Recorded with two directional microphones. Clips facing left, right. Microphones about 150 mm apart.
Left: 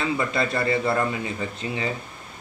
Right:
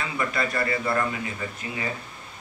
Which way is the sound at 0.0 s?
25° left (ahead or behind).